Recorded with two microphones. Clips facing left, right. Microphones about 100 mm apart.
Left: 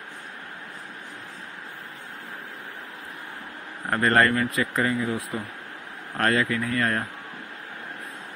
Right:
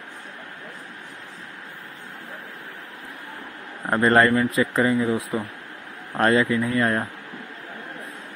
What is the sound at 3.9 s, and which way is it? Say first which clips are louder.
Speech: right 3 dB; 25° right (ahead or behind).